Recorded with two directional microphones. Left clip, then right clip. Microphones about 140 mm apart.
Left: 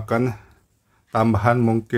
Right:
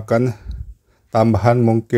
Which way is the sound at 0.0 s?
30° right (ahead or behind).